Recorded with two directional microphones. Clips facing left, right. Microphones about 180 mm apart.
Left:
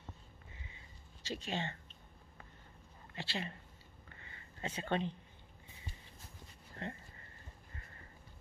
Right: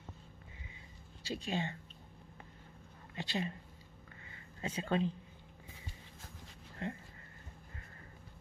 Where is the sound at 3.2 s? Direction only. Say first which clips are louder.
Right 4 dB; 20° right (ahead or behind).